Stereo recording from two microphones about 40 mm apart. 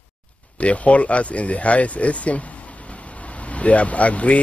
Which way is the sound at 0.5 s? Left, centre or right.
Left.